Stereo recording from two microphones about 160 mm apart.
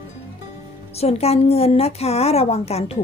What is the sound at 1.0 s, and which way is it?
A woman's voice, 40° left (ahead or behind).